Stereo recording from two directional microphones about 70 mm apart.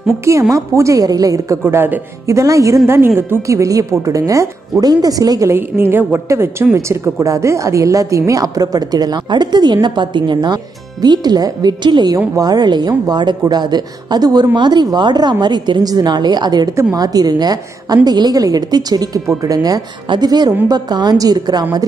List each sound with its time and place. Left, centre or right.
0.2 s a woman's voice: right
1.7 s a woman's voice: right
2.2 s a woman's voice: right
5.5 s a woman's voice: right
6.2 s a woman's voice: right
12.4 s speech: right
16.9 s a woman's voice: right